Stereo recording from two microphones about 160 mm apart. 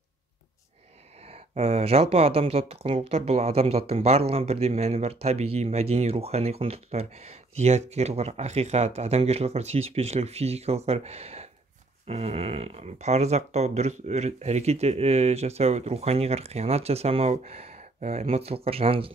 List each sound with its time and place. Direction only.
1.3 s speech: 40° right (ahead or behind)